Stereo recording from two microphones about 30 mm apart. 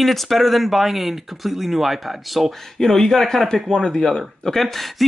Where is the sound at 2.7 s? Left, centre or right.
Centre.